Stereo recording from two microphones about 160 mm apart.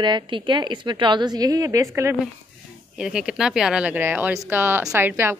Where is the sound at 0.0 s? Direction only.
30° right (ahead or behind).